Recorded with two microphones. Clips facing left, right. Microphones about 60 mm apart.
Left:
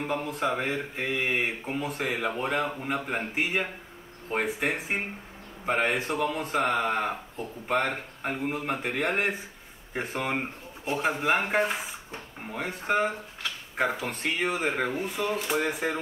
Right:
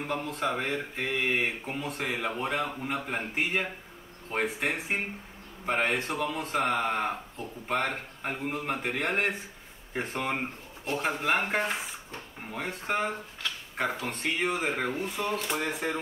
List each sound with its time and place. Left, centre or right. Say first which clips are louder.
0.0 s speech: left 2 dB; centre